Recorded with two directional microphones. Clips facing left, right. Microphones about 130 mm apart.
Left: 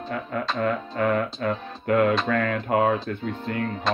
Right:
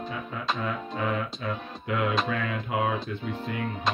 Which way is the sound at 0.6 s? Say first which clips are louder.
Left 6 dB; 55° left (ahead or behind).